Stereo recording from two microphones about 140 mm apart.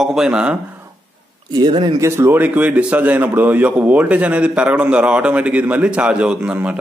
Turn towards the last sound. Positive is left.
turn(degrees=-10)  # may be behind; listen again after turning